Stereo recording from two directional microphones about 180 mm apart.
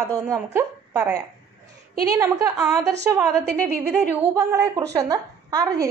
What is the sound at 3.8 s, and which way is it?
Speech, 15° right (ahead or behind).